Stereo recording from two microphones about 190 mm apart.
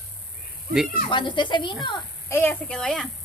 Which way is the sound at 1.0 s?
25° left (ahead or behind).